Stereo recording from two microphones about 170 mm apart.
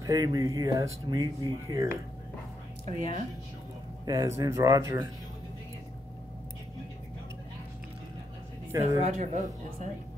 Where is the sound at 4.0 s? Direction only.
20° right (ahead or behind).